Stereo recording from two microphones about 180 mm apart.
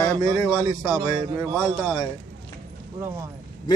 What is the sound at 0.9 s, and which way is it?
Speech, 20° right (ahead or behind).